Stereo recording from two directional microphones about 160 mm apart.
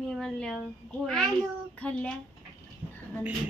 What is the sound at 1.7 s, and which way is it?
Speech, 10° left (ahead or behind).